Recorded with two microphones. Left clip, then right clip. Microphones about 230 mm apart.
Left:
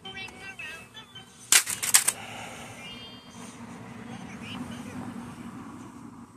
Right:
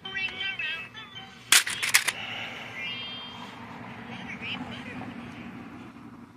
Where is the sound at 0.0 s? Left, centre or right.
Left.